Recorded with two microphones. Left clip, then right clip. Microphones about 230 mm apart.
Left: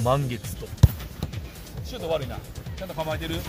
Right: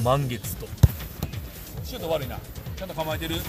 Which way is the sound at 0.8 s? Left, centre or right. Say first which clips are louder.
Left 1 dB; left.